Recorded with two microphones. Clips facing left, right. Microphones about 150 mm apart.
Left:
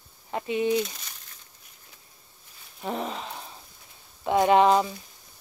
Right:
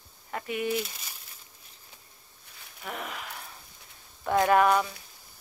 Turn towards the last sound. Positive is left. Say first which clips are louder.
# left 3 dB
turn(degrees=25)  # may be behind; listen again after turning